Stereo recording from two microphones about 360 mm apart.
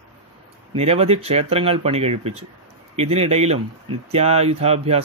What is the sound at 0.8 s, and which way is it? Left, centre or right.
Speech, centre.